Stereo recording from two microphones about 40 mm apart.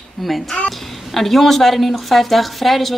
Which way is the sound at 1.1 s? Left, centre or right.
Centre.